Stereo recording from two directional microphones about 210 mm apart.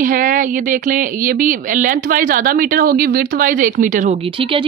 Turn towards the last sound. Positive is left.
turn(degrees=-25)  # may be behind; listen again after turning